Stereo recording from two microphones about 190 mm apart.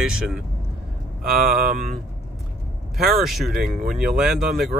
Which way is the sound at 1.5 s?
50° right (ahead or behind).